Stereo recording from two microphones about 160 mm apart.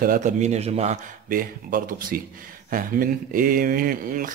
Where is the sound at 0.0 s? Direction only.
55° right (ahead or behind).